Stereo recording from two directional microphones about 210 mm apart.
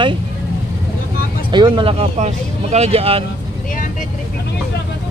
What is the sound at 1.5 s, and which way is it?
Speech, 20° right (ahead or behind).